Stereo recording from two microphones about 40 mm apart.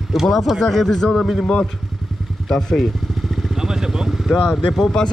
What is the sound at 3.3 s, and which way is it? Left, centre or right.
Vehicle, centre.